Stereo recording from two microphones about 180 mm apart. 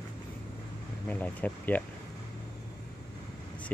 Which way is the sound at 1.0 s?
10° left (ahead or behind).